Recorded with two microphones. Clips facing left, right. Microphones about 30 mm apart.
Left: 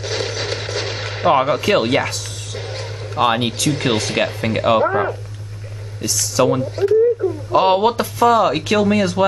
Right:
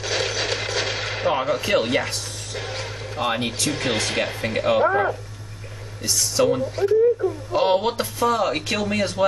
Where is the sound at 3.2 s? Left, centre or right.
Left.